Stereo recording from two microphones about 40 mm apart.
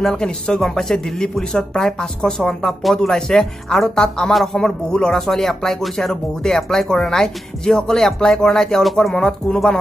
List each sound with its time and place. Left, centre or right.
0.0 s speech: centre
5.2 s speech: centre
9.1 s speech: centre